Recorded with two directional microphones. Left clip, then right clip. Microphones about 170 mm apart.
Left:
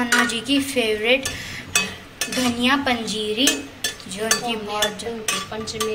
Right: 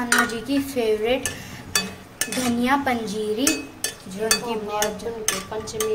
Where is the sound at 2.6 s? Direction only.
15° right (ahead or behind).